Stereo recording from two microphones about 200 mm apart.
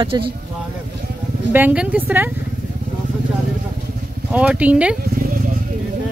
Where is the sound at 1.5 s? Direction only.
10° right (ahead or behind).